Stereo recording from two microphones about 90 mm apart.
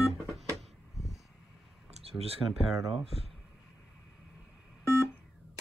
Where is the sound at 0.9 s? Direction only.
Centre (ahead or behind).